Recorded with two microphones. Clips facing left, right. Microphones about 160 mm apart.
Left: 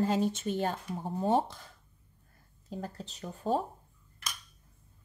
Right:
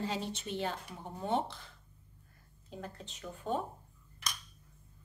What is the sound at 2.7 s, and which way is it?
Speech, 35° left (ahead or behind).